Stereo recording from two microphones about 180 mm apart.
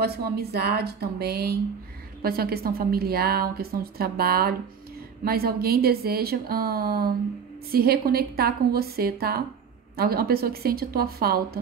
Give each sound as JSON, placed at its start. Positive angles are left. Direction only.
{"t": 0.0, "sound": "a woman's voice", "side_deg": -60}